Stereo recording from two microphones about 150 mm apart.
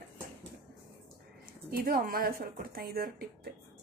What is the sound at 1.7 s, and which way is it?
A woman's voice, 70° right (ahead or behind).